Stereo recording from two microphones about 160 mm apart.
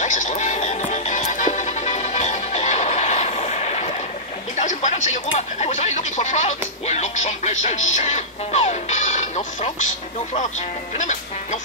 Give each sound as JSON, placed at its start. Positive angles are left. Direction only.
{"t": 0.0, "sound": "music", "side_deg": 50}
{"t": 4.6, "sound": "a sound", "side_deg": 50}
{"t": 11.0, "sound": "speech", "side_deg": 50}